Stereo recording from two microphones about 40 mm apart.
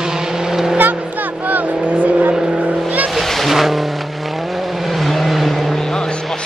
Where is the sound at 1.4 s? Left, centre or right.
Right.